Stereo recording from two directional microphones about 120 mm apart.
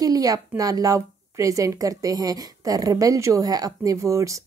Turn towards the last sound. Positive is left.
turn(degrees=-25)  # may be behind; listen again after turning